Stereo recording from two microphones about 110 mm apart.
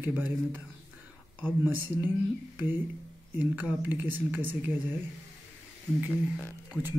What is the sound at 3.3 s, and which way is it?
Speech, 15° right (ahead or behind).